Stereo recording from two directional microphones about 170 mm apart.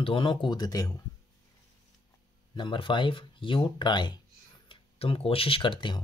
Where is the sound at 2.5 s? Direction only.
25° left (ahead or behind).